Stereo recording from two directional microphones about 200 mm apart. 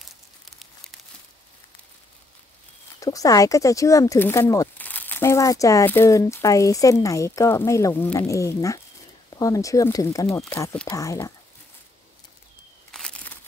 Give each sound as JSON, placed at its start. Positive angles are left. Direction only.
{"t": 0.5, "sound": "crumpling", "side_deg": 0}
{"t": 3.0, "sound": "speech", "side_deg": 15}
{"t": 12.9, "sound": "a sound", "side_deg": 0}